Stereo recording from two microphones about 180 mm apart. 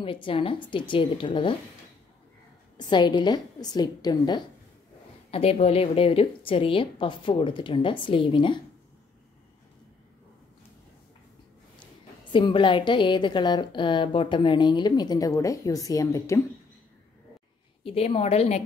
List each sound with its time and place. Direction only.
0.0 s a woman's voice: 30° left (ahead or behind)
2.8 s a woman's voice: 25° left (ahead or behind)
5.3 s a woman's voice: 35° left (ahead or behind)
11.8 s a woman's voice: 25° left (ahead or behind)
17.8 s a woman's voice: 35° left (ahead or behind)